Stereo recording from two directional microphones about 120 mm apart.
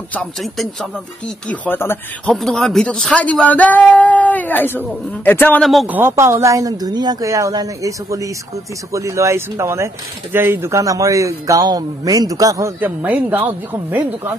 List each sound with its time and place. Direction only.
0.1 s speech: 5° left (ahead or behind)
2.2 s speech: 5° left (ahead or behind)
5.6 s speech: centre (ahead or behind)
5.9 s speech: 20° right (ahead or behind)
12.8 s speech: 15° right (ahead or behind)